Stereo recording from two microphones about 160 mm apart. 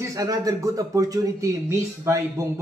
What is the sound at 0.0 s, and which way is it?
A man's voice, 20° right (ahead or behind).